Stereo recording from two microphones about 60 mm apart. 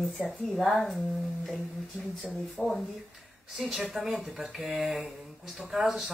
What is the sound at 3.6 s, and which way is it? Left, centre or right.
Speech, centre.